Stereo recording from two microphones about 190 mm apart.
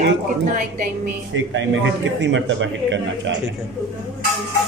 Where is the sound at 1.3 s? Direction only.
75° right (ahead or behind).